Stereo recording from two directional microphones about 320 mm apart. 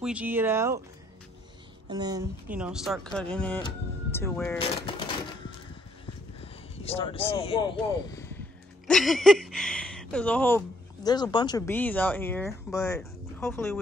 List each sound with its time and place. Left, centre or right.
0.0 s speech: centre
1.9 s speech: centre
6.4 s speech: centre